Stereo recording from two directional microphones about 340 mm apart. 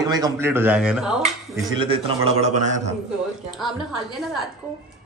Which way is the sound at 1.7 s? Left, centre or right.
Centre.